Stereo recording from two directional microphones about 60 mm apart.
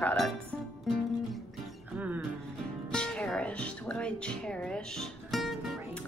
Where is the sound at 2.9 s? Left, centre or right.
Centre.